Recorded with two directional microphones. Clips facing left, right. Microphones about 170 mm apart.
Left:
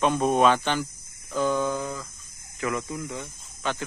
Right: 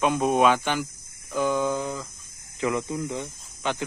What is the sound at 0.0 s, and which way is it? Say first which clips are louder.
Speech: even; 10° right (ahead or behind).